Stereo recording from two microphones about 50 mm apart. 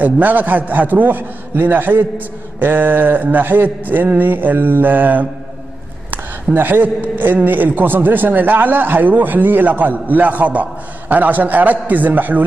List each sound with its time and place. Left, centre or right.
0.0 s a man's voice: right
6.5 s a man's voice: right